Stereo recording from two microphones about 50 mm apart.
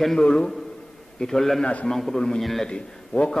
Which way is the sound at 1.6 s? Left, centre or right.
Left.